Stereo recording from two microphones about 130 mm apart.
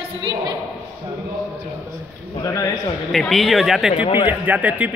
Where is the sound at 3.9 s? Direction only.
40° left (ahead or behind).